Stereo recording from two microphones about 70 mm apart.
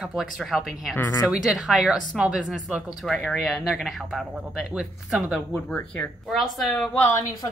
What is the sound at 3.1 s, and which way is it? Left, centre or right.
Speech, centre.